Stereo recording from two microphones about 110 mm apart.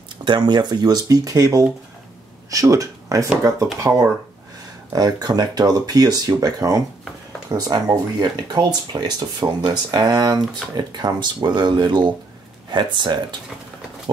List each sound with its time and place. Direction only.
0.2 s speech: 45° right (ahead or behind)